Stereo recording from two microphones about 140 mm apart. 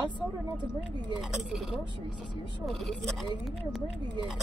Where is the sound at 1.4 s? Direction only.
5° right (ahead or behind).